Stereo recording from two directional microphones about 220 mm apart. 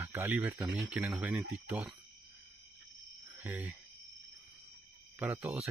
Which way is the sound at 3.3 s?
10° right (ahead or behind).